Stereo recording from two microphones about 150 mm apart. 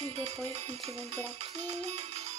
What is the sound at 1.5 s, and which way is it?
Music, 50° right (ahead or behind).